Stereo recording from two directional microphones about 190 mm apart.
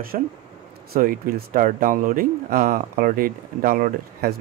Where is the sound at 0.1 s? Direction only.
45° right (ahead or behind).